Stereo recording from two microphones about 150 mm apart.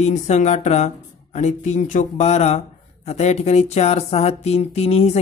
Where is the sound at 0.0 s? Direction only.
50° left (ahead or behind).